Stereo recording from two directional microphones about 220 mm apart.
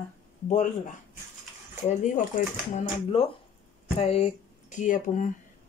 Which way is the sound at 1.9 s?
35° left (ahead or behind).